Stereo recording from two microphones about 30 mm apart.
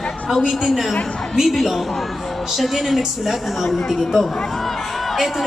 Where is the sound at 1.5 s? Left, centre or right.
Centre.